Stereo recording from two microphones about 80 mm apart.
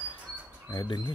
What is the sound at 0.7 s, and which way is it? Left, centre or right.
Speech, left.